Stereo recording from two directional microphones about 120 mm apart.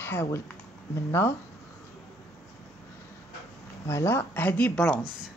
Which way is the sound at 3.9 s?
20° left (ahead or behind).